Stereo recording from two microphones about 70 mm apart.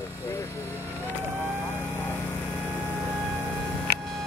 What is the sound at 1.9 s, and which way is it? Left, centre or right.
Vehicle, left.